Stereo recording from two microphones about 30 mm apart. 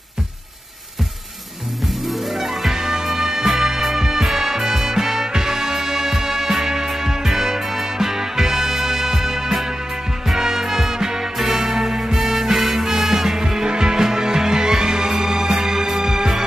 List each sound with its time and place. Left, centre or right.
2.0 s music: centre
13.7 s music: right